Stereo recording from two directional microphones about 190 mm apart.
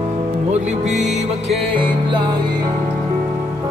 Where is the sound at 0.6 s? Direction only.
40° right (ahead or behind).